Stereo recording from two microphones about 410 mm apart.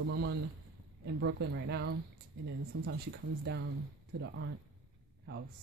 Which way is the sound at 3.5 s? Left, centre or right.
Right.